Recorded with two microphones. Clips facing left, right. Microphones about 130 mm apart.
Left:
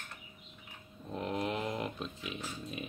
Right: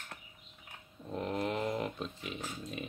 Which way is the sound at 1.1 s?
Centre (ahead or behind).